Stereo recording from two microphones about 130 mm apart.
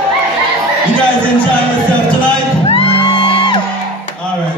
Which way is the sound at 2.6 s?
45° left (ahead or behind).